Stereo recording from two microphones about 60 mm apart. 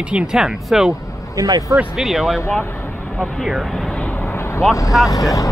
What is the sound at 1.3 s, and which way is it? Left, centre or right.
Speech, right.